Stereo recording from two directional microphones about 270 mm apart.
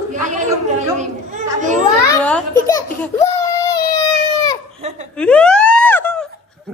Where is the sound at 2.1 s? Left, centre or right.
Centre.